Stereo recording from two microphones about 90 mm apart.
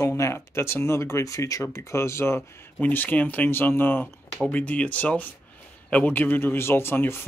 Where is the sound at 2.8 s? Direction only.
20° left (ahead or behind).